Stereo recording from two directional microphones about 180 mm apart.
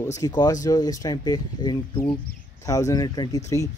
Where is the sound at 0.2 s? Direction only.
20° left (ahead or behind).